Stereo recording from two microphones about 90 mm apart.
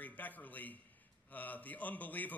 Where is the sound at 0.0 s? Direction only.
20° left (ahead or behind).